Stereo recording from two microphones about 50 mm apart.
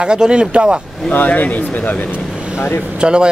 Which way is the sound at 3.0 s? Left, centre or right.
Centre.